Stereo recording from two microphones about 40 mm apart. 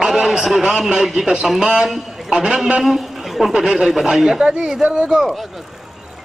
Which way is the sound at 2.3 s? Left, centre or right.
Right.